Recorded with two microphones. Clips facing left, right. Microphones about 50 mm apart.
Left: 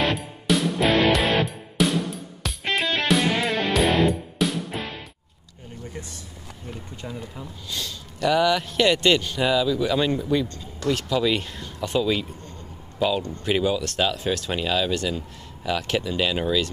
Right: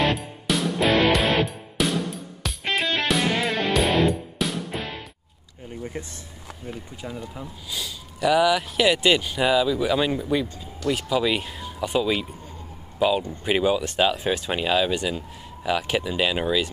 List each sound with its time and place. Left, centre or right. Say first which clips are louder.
0.1 s music: left 2 dB; centre
5.9 s speech: right 3 dB; right
6.6 s speech: right 1 dB; centre